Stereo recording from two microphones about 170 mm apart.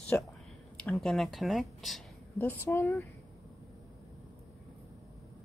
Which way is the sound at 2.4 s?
15° left (ahead or behind).